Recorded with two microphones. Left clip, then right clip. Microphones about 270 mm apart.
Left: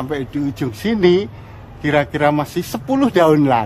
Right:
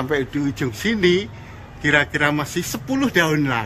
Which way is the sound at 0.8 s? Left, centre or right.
Centre.